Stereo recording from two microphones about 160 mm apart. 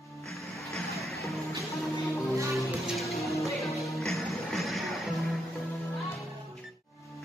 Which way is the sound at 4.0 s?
Centre (ahead or behind).